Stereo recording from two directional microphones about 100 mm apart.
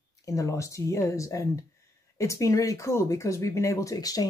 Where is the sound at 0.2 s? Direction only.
35° left (ahead or behind).